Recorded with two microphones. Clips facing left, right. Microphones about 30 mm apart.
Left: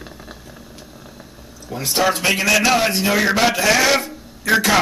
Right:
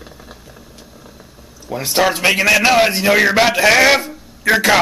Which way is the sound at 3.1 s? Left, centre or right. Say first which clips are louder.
Right 4 dB; right.